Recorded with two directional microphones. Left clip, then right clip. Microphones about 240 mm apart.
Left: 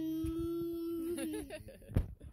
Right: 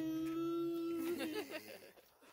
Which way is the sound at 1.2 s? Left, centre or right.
Centre.